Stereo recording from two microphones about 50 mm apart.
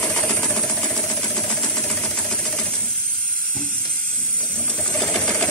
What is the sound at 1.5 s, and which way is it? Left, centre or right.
Sewing machine, centre.